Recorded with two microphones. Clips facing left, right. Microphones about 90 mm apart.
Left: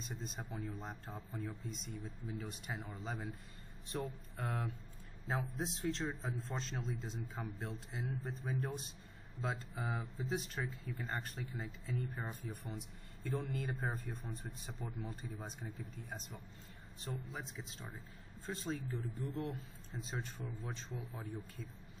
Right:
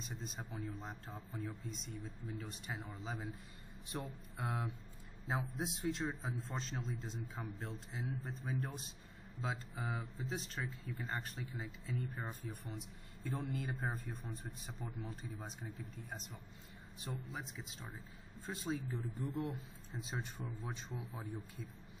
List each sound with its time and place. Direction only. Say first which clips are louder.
0.0 s speech: left 1 dB; centre (ahead or behind)
19.1 s a man's voice: right 2 dB; 15° right (ahead or behind)